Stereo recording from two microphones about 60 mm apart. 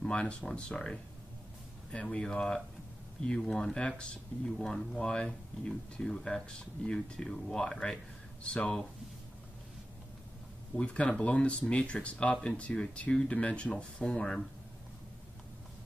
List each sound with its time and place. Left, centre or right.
0.0 s speech: centre
10.8 s speech: centre